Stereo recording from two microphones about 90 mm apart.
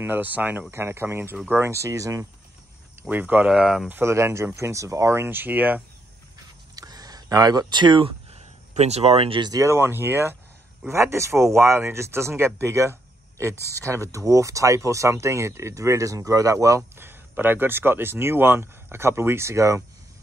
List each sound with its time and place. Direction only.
0.0 s speech: 20° right (ahead or behind)
3.0 s speech: 20° right (ahead or behind)
3.5 s speech: 5° right (ahead or behind)
3.9 s speech: 30° right (ahead or behind)
6.7 s a sound: 45° right (ahead or behind); by 8.4 s 70° right (ahead or behind)
9.1 s speech: 90° right
9.4 s speech: 40° right (ahead or behind)